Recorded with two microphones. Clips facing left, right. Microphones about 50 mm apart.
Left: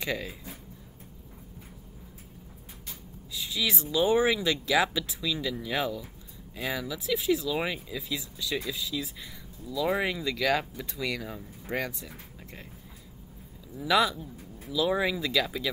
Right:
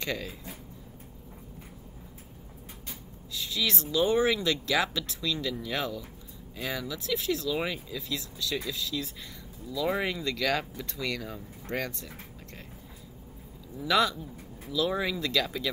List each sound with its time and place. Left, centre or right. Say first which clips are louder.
0.0 s speech: left 1 dB; centre
3.3 s speech: even; centre
13.7 s speech: left 1 dB; centre